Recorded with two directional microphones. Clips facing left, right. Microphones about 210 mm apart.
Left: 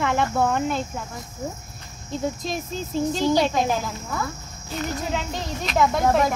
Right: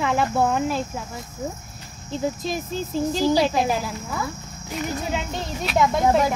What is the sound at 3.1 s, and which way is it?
Speech, 5° right (ahead or behind).